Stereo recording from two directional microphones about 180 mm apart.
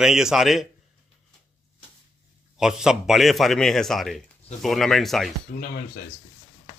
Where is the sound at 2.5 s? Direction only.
5° right (ahead or behind).